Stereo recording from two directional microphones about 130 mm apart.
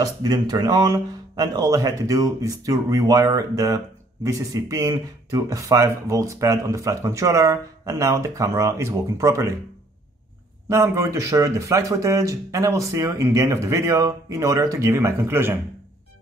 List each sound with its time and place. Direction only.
0.0 s speech: 30° right (ahead or behind)
10.7 s speech: 20° right (ahead or behind)